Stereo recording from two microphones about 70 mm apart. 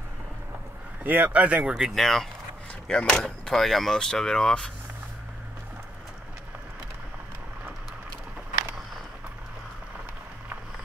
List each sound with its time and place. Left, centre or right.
1.0 s speech: right
1.8 s speech: centre